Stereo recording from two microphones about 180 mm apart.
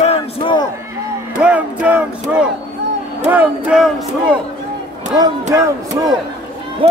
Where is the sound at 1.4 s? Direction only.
10° right (ahead or behind).